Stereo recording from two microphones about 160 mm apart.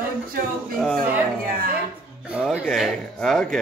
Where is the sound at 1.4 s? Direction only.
60° right (ahead or behind).